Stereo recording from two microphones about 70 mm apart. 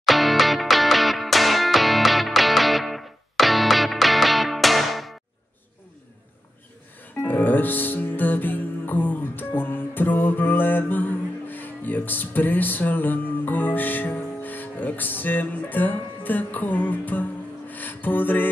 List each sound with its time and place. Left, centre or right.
0.0 s music: centre
7.2 s music: left